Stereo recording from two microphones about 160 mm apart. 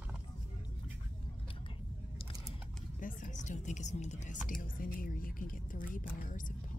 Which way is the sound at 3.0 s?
55° left (ahead or behind).